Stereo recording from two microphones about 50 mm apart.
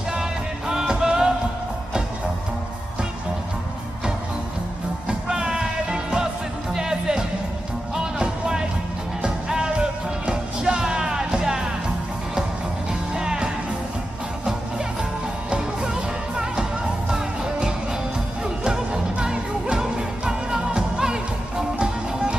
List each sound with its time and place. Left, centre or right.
0.1 s music: centre
5.0 s music: centre
13.1 s music: centre
15.5 s music: centre